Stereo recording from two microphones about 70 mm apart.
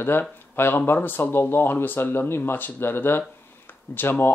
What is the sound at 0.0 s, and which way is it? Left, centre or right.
A man's voice, left.